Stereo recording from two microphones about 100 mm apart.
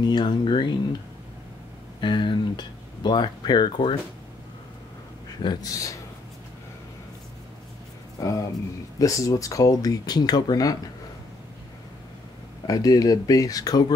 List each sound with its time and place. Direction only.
0.0 s speech: 45° left (ahead or behind)
2.0 s speech: 50° left (ahead or behind)
5.4 s speech: 45° left (ahead or behind)
8.2 s speech: 35° left (ahead or behind)
12.6 s speech: 35° left (ahead or behind)